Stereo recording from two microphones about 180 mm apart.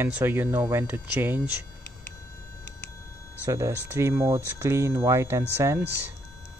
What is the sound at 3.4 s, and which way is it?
Speech, 15° right (ahead or behind).